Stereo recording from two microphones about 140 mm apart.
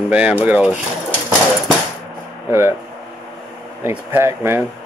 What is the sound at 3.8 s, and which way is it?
Speech, 15° right (ahead or behind).